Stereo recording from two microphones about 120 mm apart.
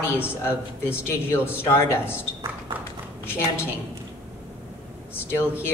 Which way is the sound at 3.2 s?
20° left (ahead or behind).